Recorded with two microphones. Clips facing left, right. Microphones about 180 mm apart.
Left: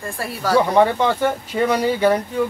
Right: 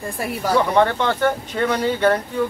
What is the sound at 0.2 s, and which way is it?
Speech, 15° right (ahead or behind).